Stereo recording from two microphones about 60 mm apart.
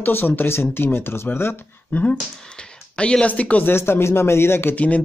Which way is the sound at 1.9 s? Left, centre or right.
Centre.